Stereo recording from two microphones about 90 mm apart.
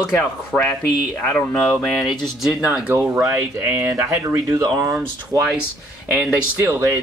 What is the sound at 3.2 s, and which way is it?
Speech, 25° right (ahead or behind).